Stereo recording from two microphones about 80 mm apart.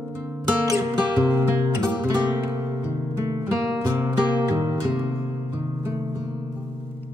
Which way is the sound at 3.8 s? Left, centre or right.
Right.